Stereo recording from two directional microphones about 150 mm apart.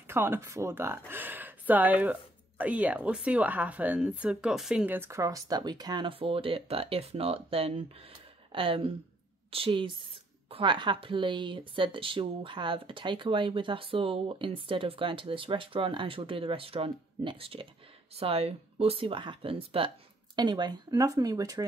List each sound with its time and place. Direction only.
0.0 s speech: 15° right (ahead or behind)